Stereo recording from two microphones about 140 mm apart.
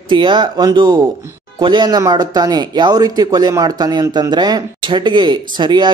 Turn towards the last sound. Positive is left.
turn(degrees=-35)  # may be behind; listen again after turning